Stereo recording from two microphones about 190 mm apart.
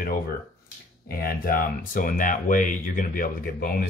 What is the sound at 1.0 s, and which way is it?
Speech, 50° left (ahead or behind).